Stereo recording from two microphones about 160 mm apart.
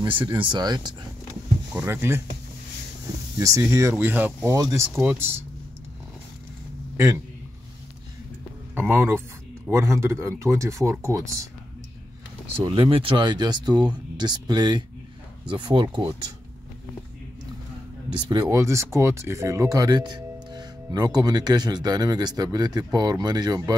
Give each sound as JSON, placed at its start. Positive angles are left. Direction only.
{"t": 0.0, "sound": "speech", "side_deg": -30}
{"t": 1.8, "sound": "speech", "side_deg": -15}
{"t": 3.3, "sound": "speech", "side_deg": -20}
{"t": 4.6, "sound": "speech", "side_deg": -20}
{"t": 8.7, "sound": "speech", "side_deg": -15}
{"t": 12.6, "sound": "speech", "side_deg": -35}
{"t": 18.3, "sound": "speech", "side_deg": -20}